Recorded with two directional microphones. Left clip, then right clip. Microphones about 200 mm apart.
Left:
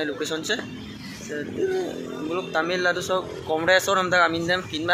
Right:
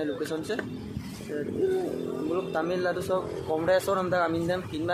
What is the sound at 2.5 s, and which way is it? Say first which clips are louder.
Speech: left 8 dB; 5° left (ahead or behind).